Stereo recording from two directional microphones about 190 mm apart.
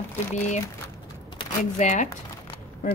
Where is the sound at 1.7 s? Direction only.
40° left (ahead or behind).